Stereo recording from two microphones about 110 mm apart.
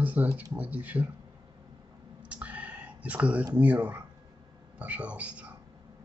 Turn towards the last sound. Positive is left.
turn(degrees=-10)  # may be behind; listen again after turning